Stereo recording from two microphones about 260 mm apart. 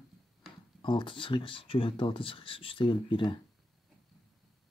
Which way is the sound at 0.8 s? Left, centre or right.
Centre.